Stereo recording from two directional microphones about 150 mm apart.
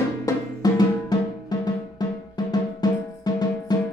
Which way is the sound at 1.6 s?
25° left (ahead or behind).